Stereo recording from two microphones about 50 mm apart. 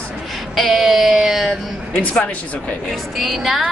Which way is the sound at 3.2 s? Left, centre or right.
Centre.